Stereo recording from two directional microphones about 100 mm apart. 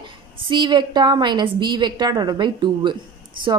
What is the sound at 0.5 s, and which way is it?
A woman's voice, 50° right (ahead or behind).